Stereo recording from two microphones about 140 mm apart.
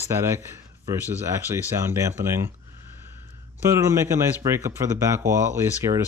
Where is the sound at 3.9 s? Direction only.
20° right (ahead or behind).